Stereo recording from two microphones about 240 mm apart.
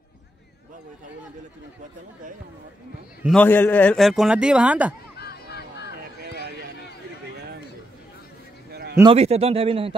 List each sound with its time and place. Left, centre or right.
3.3 s a man's voice: centre
5.1 s a sound: left
8.9 s speech: right